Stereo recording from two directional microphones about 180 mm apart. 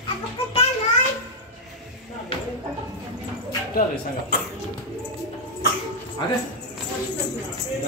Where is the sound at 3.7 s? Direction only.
55° left (ahead or behind).